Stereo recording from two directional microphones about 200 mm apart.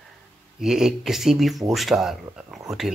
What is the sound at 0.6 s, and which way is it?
Speech, centre (ahead or behind).